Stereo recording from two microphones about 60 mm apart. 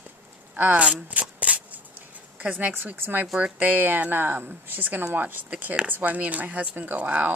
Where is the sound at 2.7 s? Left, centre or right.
Right.